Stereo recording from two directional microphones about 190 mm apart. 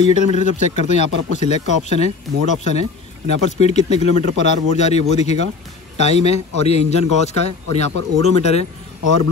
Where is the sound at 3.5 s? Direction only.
35° left (ahead or behind).